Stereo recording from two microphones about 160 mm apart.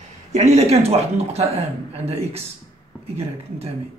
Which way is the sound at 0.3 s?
45° right (ahead or behind).